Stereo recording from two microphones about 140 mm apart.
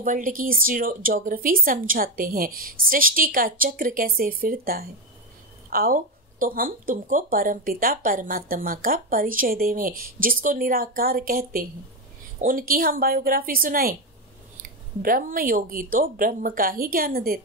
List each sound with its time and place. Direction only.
0.0 s speech: 70° right (ahead or behind); by 17.4 s 90° right